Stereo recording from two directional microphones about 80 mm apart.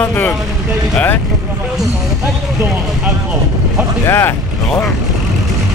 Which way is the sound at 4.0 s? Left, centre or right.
Left.